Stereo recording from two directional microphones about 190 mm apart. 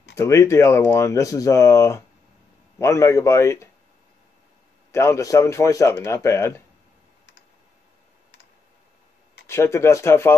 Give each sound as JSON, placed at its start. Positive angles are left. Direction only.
{"t": 0.1, "sound": "speech", "side_deg": 15}
{"t": 4.9, "sound": "speech", "side_deg": 15}
{"t": 9.5, "sound": "speech", "side_deg": 15}